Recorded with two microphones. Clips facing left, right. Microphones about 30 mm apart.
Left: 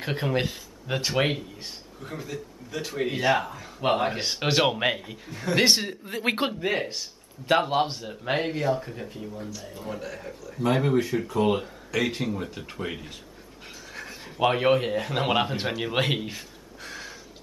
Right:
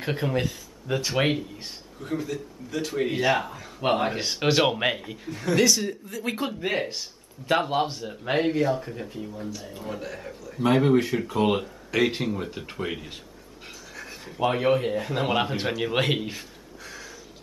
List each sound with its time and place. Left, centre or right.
0.0 s speech: centre
0.3 s speech: left
1.1 s speech: centre
5.6 s speech: left
6.6 s a man's voice: centre
14.0 s a sound: centre
14.4 s a man's voice: left
15.3 s speech: centre
16.8 s a sound: left